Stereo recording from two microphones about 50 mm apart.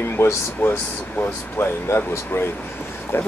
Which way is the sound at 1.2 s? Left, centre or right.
Left.